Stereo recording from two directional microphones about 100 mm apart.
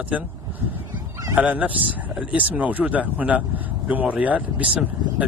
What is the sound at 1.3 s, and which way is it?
Speech, 15° right (ahead or behind).